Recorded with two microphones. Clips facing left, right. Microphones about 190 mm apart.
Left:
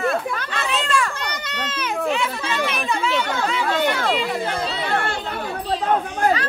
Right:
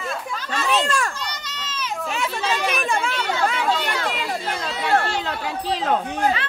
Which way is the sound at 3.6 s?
55° left (ahead or behind).